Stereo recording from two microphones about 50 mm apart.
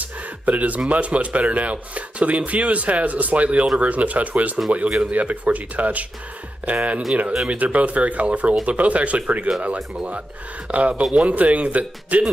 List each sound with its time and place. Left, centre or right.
0.0 s speech: right
10.7 s speech: right